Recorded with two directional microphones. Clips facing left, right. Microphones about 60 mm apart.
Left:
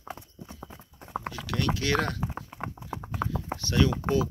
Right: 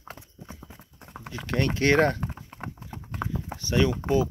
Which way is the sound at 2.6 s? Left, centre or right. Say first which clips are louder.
Left 3 dB; centre.